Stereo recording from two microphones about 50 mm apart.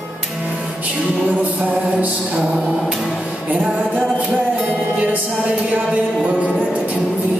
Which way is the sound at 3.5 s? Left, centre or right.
Right.